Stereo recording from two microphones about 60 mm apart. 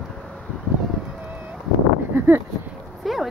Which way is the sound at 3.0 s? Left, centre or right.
Centre.